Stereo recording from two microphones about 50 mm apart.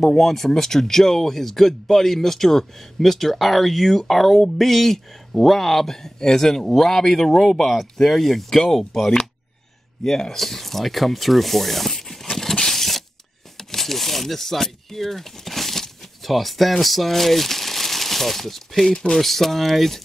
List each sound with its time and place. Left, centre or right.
0.1 s speech: centre
13.6 s a sound: centre
18.9 s speech: centre
19.1 s speech: centre